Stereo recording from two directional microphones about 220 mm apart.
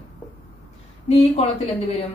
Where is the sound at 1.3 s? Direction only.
25° left (ahead or behind).